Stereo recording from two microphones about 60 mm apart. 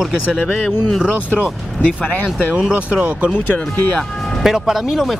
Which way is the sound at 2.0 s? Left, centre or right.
Left.